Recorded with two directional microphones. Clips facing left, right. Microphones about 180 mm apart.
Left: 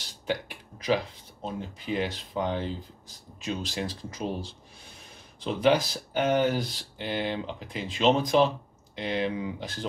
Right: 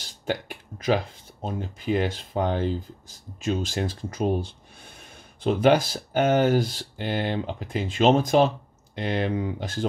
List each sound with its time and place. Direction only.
1.4 s speech: 45° right (ahead or behind)